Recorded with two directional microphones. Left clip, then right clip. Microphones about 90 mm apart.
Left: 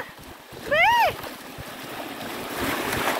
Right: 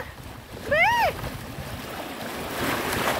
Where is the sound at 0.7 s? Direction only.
20° left (ahead or behind).